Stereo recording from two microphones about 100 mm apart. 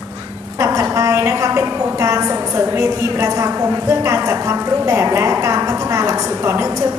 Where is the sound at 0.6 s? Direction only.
30° right (ahead or behind).